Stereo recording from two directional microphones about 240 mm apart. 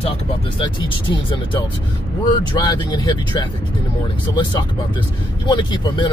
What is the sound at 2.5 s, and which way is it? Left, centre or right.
Speech, centre.